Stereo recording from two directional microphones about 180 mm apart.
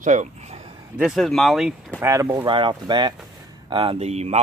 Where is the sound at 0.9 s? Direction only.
Centre (ahead or behind).